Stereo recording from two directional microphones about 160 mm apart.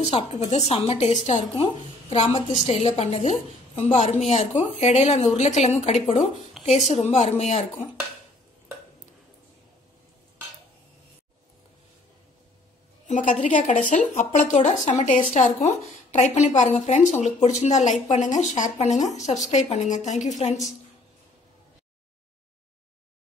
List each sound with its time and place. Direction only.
0.0 s a woman's voice: 40° left (ahead or behind)
2.5 s speech: 45° left (ahead or behind)
6.6 s a sound: centre (ahead or behind)
6.9 s speech: 45° left (ahead or behind)
13.0 s speech: 50° left (ahead or behind)